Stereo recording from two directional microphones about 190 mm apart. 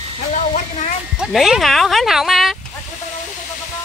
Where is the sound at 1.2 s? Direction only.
Centre (ahead or behind).